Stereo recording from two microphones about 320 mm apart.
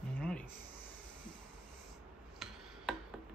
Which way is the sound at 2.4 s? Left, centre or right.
Centre.